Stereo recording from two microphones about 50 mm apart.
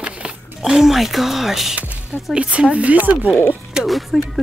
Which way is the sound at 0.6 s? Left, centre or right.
Centre.